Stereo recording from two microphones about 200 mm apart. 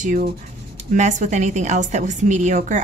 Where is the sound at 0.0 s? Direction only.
40° right (ahead or behind).